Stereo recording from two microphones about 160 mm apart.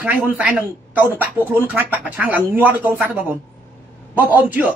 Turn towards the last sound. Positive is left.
turn(degrees=-10)  # may be behind; listen again after turning